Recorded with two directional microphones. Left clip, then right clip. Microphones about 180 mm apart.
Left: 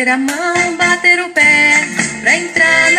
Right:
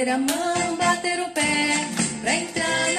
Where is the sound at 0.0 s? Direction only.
25° left (ahead or behind).